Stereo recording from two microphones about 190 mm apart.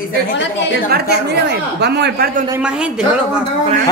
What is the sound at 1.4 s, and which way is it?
Speech, 60° right (ahead or behind).